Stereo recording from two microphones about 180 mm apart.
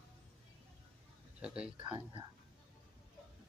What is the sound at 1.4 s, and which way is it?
Speech, 5° right (ahead or behind).